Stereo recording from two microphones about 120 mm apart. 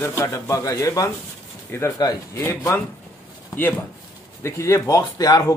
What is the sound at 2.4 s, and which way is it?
Speech, 25° left (ahead or behind).